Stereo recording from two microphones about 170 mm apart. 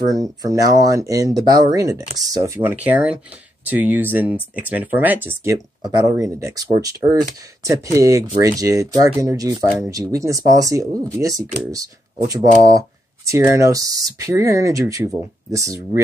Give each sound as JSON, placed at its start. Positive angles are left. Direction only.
{"t": 0.1, "sound": "speech", "side_deg": -20}